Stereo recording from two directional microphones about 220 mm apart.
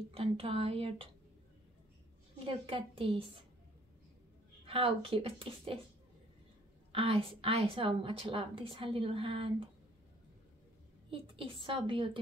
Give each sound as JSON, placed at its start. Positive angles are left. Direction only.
{"t": 0.1, "sound": "a woman's voice", "side_deg": -25}
{"t": 2.3, "sound": "a woman's voice", "side_deg": -25}
{"t": 4.6, "sound": "a woman's voice", "side_deg": -25}
{"t": 6.9, "sound": "a woman's voice", "side_deg": -25}
{"t": 11.1, "sound": "a woman's voice", "side_deg": -25}